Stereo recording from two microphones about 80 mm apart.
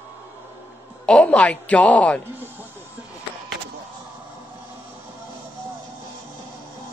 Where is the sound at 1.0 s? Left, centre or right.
Centre.